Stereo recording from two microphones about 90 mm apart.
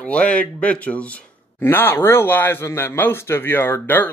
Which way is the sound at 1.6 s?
25° left (ahead or behind).